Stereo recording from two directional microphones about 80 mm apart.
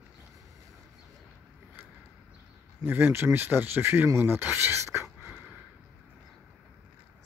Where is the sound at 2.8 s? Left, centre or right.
Right.